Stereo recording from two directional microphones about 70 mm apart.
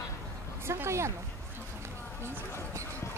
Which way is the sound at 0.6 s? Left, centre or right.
Right.